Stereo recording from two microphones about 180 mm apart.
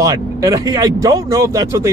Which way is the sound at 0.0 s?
20° right (ahead or behind).